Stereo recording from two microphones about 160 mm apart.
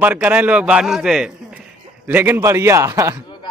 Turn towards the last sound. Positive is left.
turn(degrees=-20)  # may be behind; listen again after turning